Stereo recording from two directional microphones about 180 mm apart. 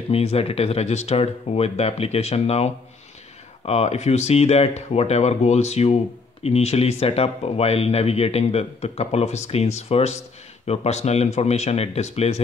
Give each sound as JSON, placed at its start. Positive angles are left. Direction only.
{"t": 0.1, "sound": "speech", "side_deg": 35}